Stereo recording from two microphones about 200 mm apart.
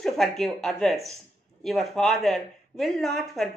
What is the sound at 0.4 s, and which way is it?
Speech, centre (ahead or behind).